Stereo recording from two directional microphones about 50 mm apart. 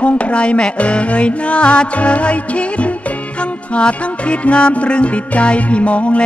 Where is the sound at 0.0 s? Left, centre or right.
Left.